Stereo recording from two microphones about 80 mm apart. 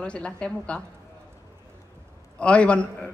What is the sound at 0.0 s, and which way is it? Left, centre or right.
Speech, centre.